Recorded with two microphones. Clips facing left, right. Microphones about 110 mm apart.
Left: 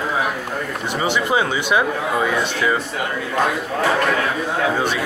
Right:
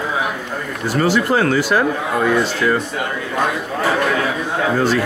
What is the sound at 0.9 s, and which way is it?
Speech, 20° left (ahead or behind).